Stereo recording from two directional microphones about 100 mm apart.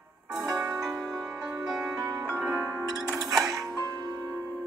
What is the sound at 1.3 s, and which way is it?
Music, 25° right (ahead or behind).